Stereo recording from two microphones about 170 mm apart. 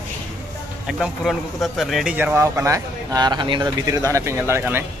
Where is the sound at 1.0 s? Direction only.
Centre (ahead or behind).